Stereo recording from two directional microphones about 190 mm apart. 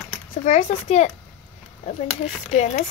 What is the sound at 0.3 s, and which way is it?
Speech, 35° left (ahead or behind).